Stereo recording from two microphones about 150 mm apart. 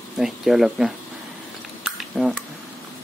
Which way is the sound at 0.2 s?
Centre (ahead or behind).